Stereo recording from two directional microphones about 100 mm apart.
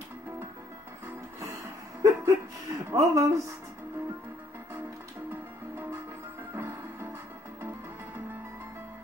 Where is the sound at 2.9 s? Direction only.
30° right (ahead or behind).